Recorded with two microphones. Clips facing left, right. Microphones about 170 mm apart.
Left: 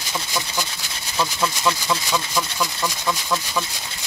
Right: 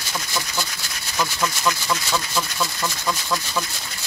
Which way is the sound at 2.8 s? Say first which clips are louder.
Left 1 dB; centre (ahead or behind).